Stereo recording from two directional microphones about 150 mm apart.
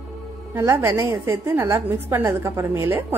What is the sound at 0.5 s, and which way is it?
A woman's voice, 15° right (ahead or behind).